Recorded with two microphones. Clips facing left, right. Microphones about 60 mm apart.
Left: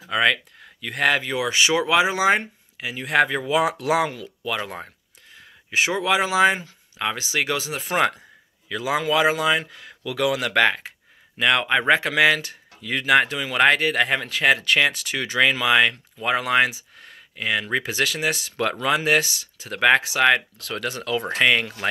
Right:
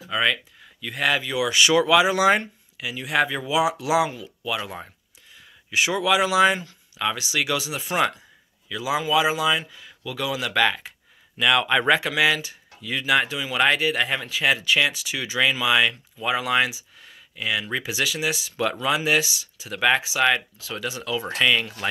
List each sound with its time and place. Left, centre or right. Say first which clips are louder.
0.1 s speech: left 3 dB; left
11.9 s speech: left 4 dB; left